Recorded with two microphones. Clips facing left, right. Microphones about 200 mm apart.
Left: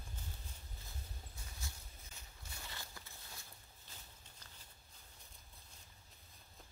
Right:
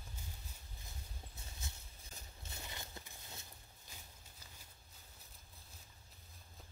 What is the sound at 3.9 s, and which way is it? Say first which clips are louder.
Walk: right 1 dB; 10° right (ahead or behind).